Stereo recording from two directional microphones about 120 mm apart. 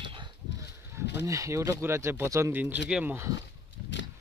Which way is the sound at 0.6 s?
25° right (ahead or behind).